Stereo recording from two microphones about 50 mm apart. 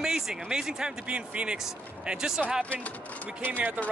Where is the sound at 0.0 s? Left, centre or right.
Centre.